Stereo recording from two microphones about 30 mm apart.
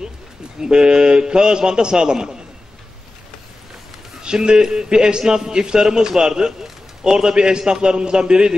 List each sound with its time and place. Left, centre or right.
0.6 s a man's voice: right
4.2 s a man's voice: right